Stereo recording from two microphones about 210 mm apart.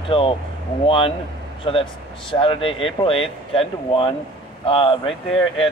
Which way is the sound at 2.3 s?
25° left (ahead or behind).